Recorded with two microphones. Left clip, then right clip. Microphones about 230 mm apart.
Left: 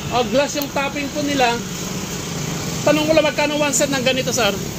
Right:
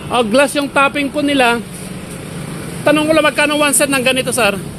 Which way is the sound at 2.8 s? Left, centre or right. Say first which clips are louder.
Right 4 dB; right.